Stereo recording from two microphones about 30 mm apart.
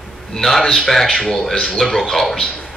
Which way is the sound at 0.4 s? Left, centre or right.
Centre.